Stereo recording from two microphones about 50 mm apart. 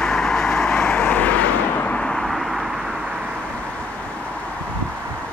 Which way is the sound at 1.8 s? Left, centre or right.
Left.